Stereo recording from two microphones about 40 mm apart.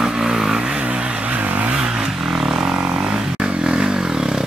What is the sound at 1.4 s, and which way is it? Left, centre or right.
Vehicle, right.